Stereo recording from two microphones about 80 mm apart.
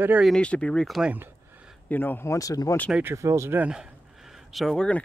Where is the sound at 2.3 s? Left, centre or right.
Left.